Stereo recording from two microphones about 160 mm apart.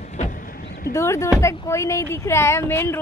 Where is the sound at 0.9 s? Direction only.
15° left (ahead or behind).